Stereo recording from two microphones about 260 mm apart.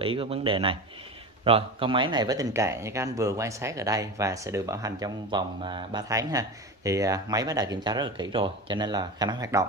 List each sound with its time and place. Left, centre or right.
0.0 s a man's voice: right